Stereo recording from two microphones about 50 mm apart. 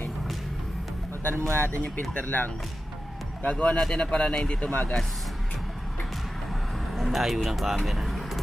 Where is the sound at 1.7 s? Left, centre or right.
Left.